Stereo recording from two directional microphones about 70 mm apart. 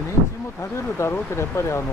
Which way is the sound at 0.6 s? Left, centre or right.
Left.